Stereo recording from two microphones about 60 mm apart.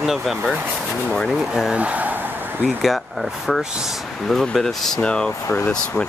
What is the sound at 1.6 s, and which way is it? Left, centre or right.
Vehicle, right.